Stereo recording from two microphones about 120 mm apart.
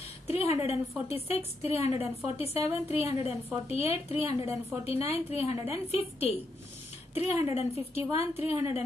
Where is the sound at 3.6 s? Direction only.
60° left (ahead or behind).